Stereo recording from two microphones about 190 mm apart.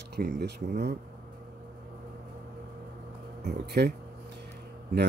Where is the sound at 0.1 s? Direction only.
60° right (ahead or behind).